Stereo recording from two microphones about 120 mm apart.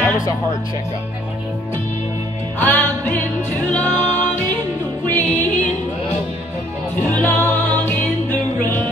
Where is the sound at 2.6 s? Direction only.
15° left (ahead or behind).